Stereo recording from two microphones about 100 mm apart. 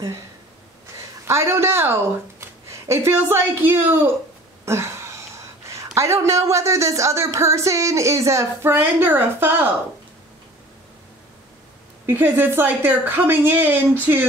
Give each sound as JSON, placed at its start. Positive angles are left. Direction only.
{"t": 1.2, "sound": "a woman's voice", "side_deg": -25}
{"t": 12.1, "sound": "a woman's voice", "side_deg": -20}